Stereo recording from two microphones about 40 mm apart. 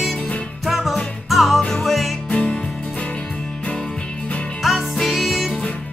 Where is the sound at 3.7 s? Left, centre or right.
Left.